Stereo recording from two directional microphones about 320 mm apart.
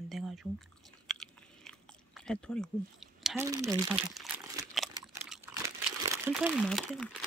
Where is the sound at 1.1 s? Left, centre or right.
Centre.